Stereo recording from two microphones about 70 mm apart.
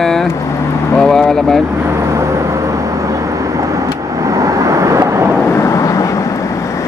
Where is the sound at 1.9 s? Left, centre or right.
Right.